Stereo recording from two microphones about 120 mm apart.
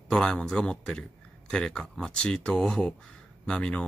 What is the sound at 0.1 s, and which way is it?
Speech, 5° left (ahead or behind).